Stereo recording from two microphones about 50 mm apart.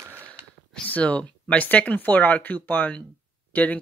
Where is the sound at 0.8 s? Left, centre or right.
Left.